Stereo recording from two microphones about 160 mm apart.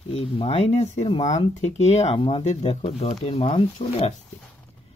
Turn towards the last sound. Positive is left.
turn(degrees=40)  # may be behind; listen again after turning